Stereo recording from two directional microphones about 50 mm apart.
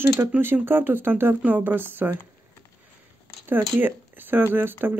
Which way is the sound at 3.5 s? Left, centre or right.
Right.